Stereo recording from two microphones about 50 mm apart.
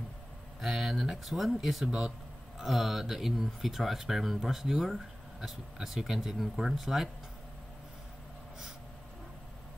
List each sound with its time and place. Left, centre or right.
0.6 s speech: centre
1.9 s speech: centre
2.6 s speech: centre